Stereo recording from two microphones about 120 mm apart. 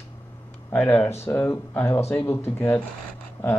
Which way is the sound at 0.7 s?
15° left (ahead or behind).